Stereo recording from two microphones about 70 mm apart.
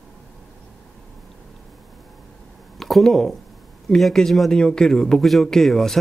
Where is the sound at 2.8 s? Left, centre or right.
Centre.